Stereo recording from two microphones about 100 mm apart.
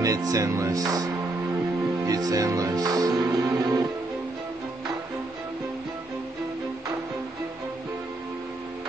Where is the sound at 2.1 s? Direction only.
35° right (ahead or behind).